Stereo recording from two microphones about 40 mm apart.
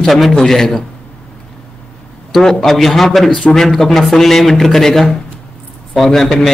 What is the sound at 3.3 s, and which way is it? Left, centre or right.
Speech, left.